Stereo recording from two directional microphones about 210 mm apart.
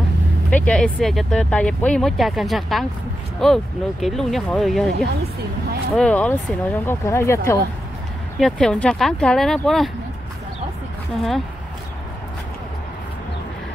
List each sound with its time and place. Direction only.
0.5 s speech: 5° left (ahead or behind)
5.9 s speech: 5° left (ahead or behind)
8.4 s speech: centre (ahead or behind)
11.1 s speech: centre (ahead or behind)